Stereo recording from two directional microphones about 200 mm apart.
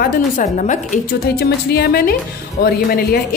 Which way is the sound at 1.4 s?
50° left (ahead or behind).